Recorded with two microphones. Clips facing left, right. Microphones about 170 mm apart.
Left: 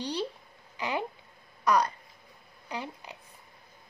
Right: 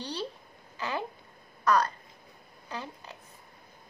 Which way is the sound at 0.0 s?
15° left (ahead or behind).